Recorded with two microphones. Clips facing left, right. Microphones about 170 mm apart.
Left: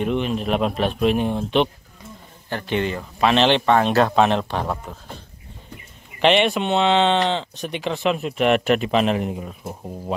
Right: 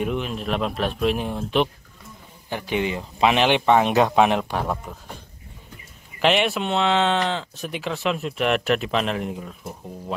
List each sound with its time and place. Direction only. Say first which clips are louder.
0.0 s speech: left 4 dB; centre (ahead or behind)
6.2 s speech: left 3 dB; 5° right (ahead or behind)